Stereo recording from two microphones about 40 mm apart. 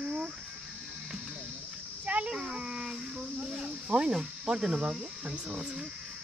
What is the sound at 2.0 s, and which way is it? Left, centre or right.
Speech, right.